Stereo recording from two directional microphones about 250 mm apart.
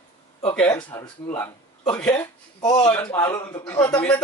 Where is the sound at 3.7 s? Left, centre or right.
Left.